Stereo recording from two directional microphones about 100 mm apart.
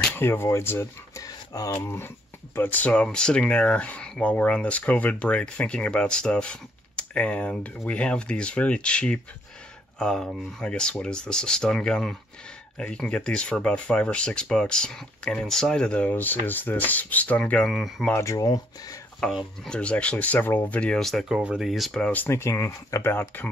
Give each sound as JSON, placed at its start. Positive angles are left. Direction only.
{"t": 0.1, "sound": "speech", "side_deg": 25}
{"t": 1.2, "sound": "a sound", "side_deg": 35}
{"t": 1.8, "sound": "speech", "side_deg": 25}
{"t": 17.7, "sound": "speech", "side_deg": 0}
{"t": 18.1, "sound": "speech", "side_deg": 30}
{"t": 19.2, "sound": "speech", "side_deg": 5}
{"t": 22.0, "sound": "speech", "side_deg": 15}
{"t": 23.1, "sound": "speech", "side_deg": 20}